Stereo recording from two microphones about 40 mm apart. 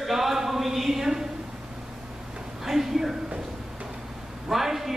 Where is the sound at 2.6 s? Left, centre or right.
Centre.